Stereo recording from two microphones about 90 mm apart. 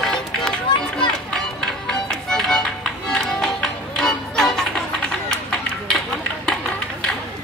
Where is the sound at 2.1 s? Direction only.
5° left (ahead or behind).